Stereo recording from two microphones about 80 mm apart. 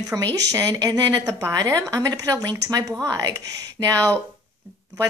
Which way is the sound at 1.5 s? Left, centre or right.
Right.